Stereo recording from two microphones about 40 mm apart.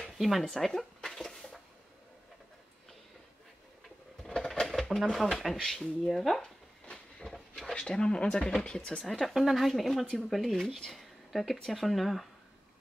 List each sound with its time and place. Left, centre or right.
0.2 s speech: centre
0.6 s a sound: centre
4.2 s a sound: centre
5.1 s speech: centre
6.9 s train: centre
7.7 s speech: left
9.2 s speech: centre